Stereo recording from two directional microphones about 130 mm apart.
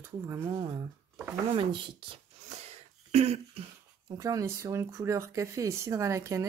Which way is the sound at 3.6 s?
50° right (ahead or behind).